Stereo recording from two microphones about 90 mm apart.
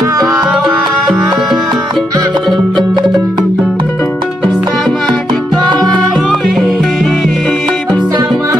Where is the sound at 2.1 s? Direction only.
50° right (ahead or behind).